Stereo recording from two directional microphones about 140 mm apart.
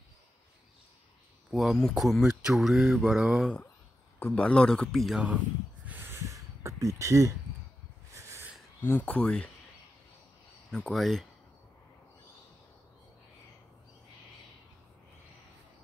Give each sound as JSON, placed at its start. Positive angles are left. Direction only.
{"t": 1.5, "sound": "speech", "side_deg": 0}
{"t": 4.2, "sound": "speech", "side_deg": 10}
{"t": 5.9, "sound": "a sound", "side_deg": -15}
{"t": 8.8, "sound": "speech", "side_deg": 15}
{"t": 10.7, "sound": "speech", "side_deg": 5}